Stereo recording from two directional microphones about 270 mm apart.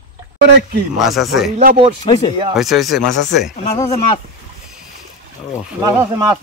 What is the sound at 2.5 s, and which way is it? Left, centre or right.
Speech, centre.